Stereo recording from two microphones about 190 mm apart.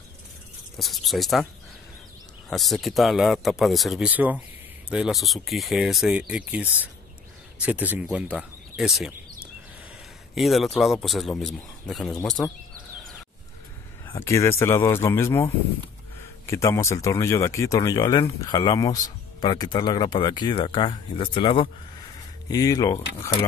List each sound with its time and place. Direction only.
0.7 s a man's voice: centre (ahead or behind)
2.5 s a man's voice: centre (ahead or behind)
10.3 s a man's voice: centre (ahead or behind)
14.0 s speech: 15° left (ahead or behind)